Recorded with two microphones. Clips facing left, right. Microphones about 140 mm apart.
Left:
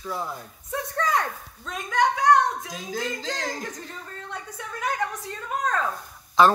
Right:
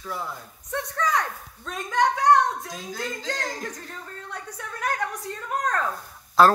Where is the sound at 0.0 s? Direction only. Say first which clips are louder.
Left 2 dB; 10° left (ahead or behind).